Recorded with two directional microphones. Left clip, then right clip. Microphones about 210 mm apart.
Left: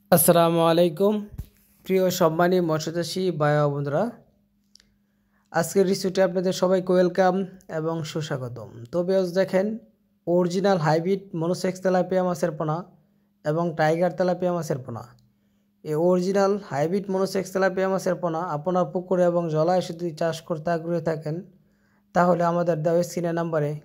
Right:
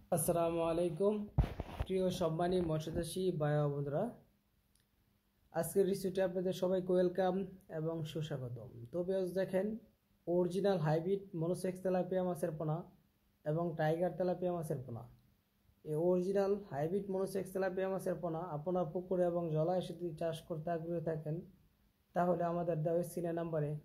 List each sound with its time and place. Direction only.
0.1 s speech: 35° left (ahead or behind); by 4.1 s 20° left (ahead or behind)
5.5 s speech: 20° left (ahead or behind)